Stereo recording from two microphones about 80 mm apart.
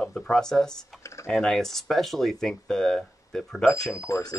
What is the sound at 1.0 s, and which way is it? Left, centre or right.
Computer keyboard, left.